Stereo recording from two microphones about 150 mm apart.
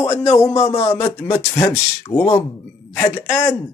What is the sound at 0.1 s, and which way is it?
Speech, 20° left (ahead or behind).